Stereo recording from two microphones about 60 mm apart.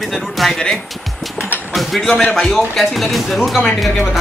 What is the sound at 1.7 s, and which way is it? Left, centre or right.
Speech, centre.